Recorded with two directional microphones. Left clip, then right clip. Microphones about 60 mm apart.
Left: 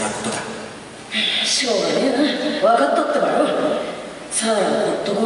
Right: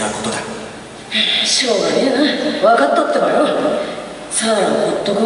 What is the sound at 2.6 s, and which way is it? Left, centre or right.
Speech, right.